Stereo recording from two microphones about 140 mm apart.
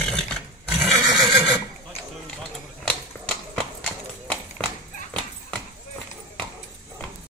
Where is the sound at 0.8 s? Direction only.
5° right (ahead or behind).